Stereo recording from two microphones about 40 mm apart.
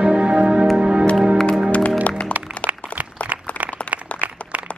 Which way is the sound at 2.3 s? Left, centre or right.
Right.